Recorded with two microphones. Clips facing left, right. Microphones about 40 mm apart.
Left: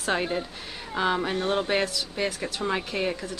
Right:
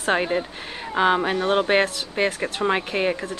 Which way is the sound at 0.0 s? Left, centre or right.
Right.